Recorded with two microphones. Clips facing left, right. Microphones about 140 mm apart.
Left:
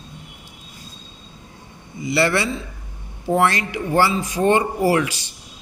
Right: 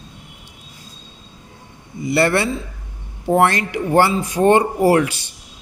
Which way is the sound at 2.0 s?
50° right (ahead or behind).